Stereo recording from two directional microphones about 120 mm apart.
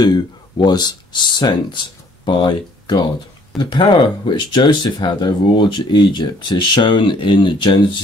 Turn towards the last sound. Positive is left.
turn(degrees=40)  # may be behind; listen again after turning